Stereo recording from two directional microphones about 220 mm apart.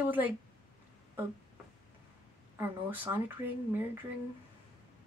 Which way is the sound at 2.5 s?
10° right (ahead or behind).